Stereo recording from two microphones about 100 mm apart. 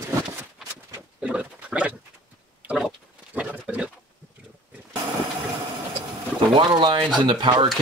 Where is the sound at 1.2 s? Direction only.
10° right (ahead or behind).